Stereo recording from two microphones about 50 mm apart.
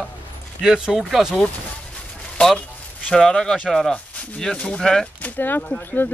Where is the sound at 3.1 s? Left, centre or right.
Centre.